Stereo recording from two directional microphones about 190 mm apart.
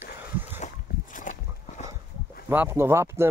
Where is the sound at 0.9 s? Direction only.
60° left (ahead or behind).